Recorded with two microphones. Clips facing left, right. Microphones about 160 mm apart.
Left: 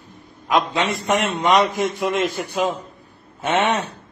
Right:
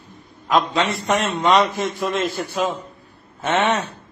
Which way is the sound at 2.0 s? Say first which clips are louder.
Left 1 dB; 15° left (ahead or behind).